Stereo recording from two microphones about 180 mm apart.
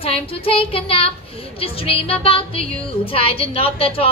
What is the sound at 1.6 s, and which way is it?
Speech, 30° left (ahead or behind).